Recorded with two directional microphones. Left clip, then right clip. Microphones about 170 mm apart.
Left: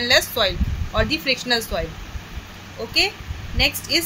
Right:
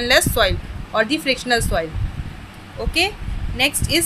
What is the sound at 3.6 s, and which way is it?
Speech, 20° right (ahead or behind).